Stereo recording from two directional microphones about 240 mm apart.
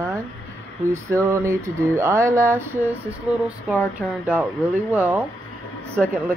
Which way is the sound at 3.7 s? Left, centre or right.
Centre.